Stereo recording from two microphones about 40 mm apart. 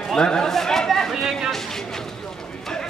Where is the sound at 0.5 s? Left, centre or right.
Centre.